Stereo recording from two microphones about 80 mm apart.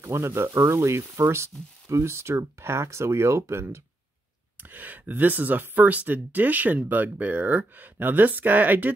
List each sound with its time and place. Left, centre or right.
0.0 s speech: right
4.6 s speech: right